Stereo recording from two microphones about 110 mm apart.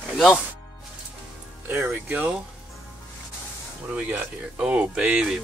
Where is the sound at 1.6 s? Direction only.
15° right (ahead or behind).